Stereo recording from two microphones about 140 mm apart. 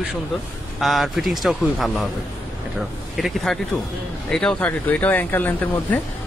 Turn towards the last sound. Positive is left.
turn(degrees=15)  # may be behind; listen again after turning